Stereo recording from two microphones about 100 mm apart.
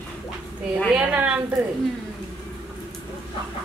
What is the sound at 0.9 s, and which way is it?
Speech, 10° right (ahead or behind).